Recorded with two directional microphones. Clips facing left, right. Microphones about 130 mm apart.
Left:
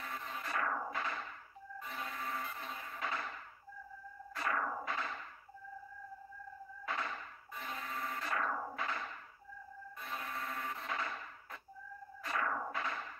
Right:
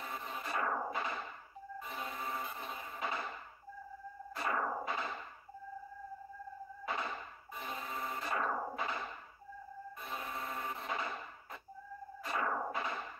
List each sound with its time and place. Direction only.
0.0 s music: 15° right (ahead or behind)
4.4 s music: 20° right (ahead or behind)
6.9 s music: 20° right (ahead or behind)
10.0 s wood: 20° right (ahead or behind)
12.2 s music: 20° right (ahead or behind)